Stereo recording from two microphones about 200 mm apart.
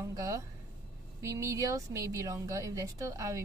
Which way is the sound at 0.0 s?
15° right (ahead or behind).